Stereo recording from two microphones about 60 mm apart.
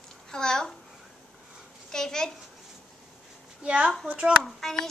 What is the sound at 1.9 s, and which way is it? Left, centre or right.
Speech, centre.